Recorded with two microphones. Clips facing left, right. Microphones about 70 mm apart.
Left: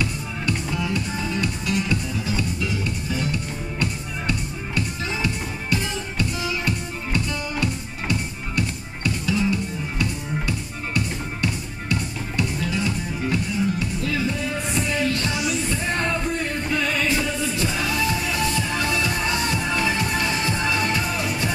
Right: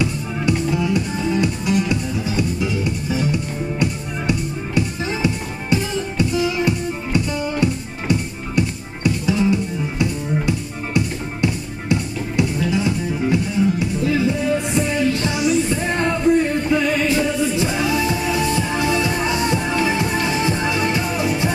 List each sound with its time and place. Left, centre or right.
0.0 s music: centre